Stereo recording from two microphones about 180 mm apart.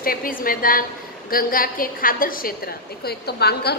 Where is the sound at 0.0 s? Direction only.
55° left (ahead or behind).